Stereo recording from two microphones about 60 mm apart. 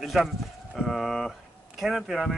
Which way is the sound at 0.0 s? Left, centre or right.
Centre.